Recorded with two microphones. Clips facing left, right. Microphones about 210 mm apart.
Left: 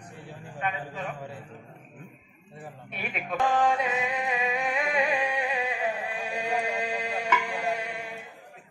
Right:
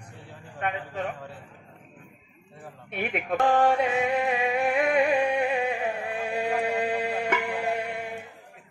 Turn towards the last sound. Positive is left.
turn(degrees=-55)  # may be behind; listen again after turning